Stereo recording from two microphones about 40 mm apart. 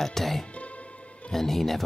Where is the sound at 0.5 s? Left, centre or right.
Left.